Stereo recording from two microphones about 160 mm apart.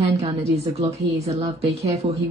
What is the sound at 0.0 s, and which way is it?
A woman's voice, 40° right (ahead or behind).